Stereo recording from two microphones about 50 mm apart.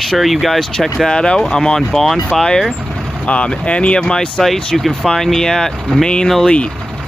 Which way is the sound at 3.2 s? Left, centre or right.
Left.